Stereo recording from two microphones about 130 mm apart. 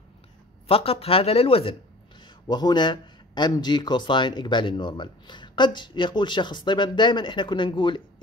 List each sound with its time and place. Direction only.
0.7 s speech: 45° left (ahead or behind)